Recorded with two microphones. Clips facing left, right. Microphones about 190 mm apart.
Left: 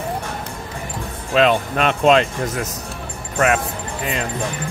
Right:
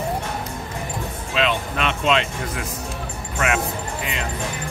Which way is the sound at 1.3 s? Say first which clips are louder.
Left 7 dB; 45° left (ahead or behind).